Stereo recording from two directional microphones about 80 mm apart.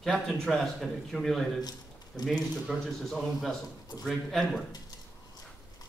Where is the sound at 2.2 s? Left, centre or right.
Centre.